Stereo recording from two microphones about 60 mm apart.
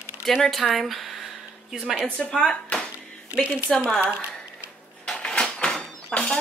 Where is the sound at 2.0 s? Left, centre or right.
Centre.